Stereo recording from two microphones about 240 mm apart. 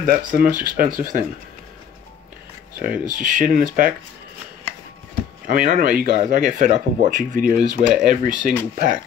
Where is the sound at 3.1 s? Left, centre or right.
Right.